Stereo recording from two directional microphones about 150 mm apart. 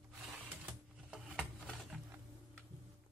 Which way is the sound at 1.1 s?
5° right (ahead or behind).